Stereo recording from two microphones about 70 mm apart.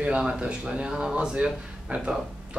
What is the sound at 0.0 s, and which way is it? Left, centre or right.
Speech, centre.